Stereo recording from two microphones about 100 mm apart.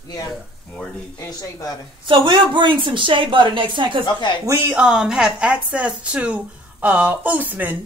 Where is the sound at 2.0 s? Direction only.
55° right (ahead or behind).